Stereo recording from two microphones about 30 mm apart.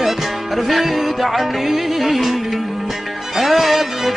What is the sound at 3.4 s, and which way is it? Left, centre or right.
Music, centre.